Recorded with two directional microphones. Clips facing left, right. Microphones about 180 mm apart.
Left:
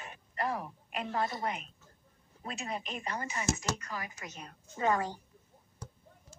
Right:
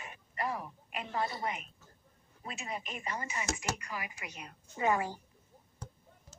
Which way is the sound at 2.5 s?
5° right (ahead or behind).